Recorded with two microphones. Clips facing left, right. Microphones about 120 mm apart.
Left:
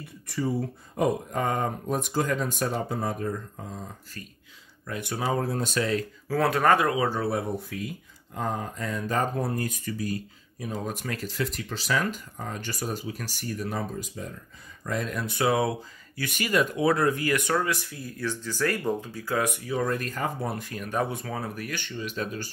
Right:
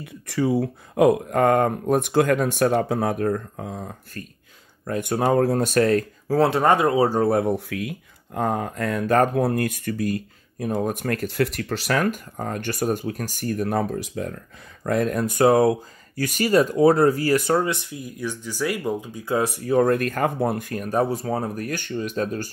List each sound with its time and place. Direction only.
0.0 s speech: 90° right; by 6.3 s 50° right (ahead or behind)
6.3 s speech: 25° right (ahead or behind); by 7.4 s 50° right (ahead or behind)
7.4 s speech: 80° right
8.4 s speech: 60° right (ahead or behind)
14.8 s speech: 55° right (ahead or behind); by 19.2 s 15° right (ahead or behind)
19.2 s speech: 30° right (ahead or behind)
19.6 s speech: 50° right (ahead or behind)